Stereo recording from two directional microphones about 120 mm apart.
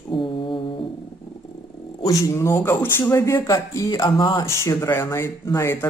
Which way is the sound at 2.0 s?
25° left (ahead or behind).